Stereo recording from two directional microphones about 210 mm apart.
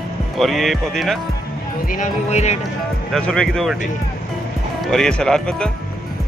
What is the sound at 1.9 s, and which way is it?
Speech, 30° left (ahead or behind).